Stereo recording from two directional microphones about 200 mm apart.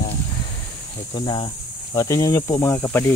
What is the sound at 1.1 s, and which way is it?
Speech, 25° left (ahead or behind).